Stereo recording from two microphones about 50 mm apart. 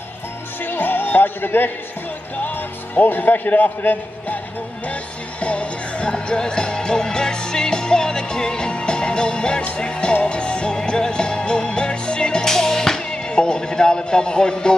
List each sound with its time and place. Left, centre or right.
0.6 s music: left
2.4 s a man's voice: left
5.4 s music: left